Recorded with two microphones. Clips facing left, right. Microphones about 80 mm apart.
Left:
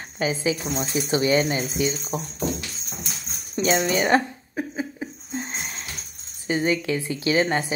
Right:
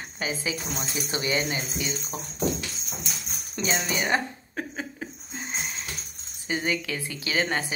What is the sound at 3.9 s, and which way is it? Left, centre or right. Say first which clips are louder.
Speech: left 6 dB; left.